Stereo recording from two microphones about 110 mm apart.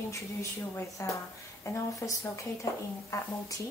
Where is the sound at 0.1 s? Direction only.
25° left (ahead or behind).